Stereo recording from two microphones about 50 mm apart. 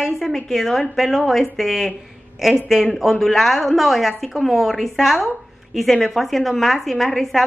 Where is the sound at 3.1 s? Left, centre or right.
Centre.